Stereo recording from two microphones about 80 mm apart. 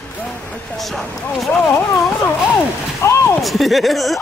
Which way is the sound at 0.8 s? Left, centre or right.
Centre.